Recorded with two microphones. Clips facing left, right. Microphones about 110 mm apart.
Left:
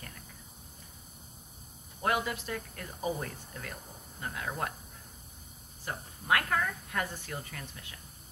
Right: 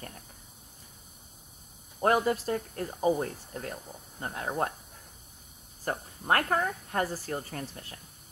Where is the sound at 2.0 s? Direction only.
40° right (ahead or behind).